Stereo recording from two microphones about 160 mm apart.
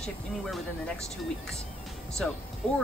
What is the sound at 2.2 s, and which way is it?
Speech, 5° left (ahead or behind).